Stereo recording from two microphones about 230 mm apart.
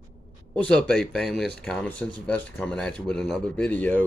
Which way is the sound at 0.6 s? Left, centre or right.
Centre.